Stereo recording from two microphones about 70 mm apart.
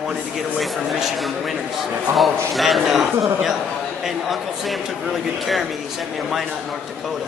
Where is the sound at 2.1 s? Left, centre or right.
Centre.